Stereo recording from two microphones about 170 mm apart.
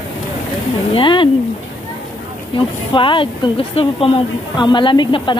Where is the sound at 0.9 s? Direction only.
30° left (ahead or behind).